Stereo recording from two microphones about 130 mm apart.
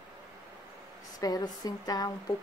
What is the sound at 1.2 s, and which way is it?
A woman's voice, 30° left (ahead or behind).